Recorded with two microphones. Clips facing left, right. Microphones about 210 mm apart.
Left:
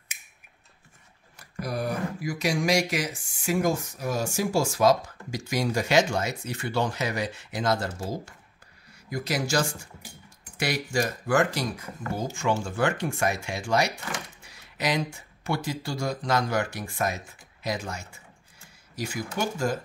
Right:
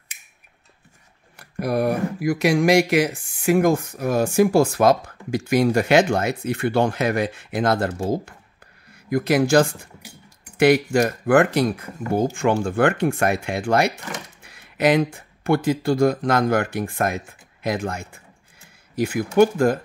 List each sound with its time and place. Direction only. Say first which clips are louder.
1.3 s speech: right 9 dB; 60° right (ahead or behind)